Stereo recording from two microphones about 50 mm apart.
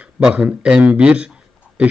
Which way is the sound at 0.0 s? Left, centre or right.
Right.